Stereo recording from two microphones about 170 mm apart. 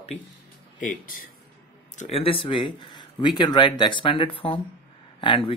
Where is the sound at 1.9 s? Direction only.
40° left (ahead or behind).